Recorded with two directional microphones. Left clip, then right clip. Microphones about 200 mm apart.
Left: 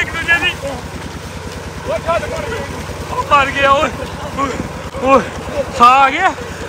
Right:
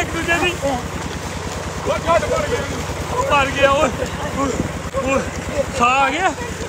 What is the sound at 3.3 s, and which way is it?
Speech, 10° right (ahead or behind).